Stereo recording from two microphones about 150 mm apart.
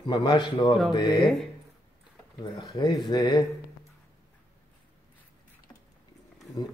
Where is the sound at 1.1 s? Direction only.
Centre (ahead or behind).